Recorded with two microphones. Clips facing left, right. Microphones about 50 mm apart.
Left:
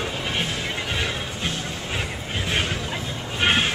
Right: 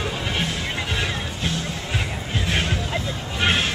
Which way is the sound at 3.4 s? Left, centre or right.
Centre.